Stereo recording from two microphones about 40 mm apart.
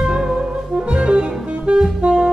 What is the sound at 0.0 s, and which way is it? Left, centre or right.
Music, centre.